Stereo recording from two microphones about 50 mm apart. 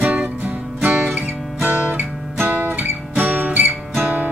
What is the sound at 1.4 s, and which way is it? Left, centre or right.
Guitar, centre.